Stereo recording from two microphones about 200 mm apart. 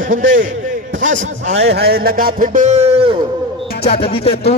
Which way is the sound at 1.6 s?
55° right (ahead or behind).